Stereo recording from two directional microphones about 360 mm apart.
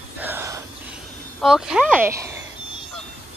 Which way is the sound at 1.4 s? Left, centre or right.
Centre.